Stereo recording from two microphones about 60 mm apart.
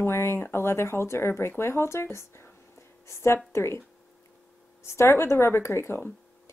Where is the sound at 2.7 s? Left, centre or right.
Left.